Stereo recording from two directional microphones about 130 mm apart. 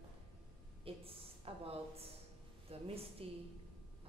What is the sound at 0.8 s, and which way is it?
A woman's voice, 45° right (ahead or behind).